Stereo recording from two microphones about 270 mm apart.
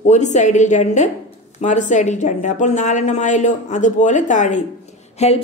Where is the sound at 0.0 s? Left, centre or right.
Left.